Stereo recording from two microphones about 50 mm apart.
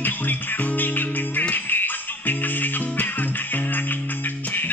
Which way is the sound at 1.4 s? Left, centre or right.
Left.